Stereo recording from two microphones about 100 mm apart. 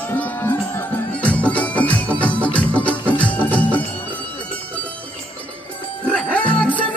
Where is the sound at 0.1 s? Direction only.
20° left (ahead or behind).